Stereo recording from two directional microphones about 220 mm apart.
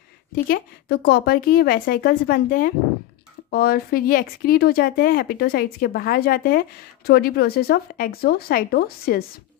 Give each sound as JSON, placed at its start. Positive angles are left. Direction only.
{"t": 0.3, "sound": "speech", "side_deg": 45}